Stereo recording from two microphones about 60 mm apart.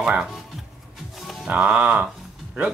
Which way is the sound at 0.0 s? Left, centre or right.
Centre.